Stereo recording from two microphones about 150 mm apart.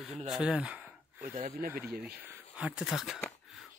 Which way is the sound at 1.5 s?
70° right (ahead or behind).